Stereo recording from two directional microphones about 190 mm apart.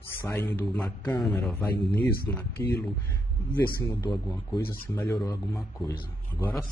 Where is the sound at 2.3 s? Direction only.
15° left (ahead or behind).